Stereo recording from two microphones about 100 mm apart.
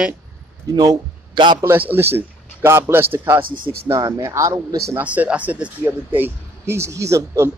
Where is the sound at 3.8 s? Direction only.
35° right (ahead or behind).